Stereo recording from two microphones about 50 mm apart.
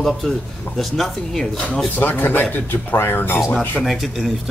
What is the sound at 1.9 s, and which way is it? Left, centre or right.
Speech, left.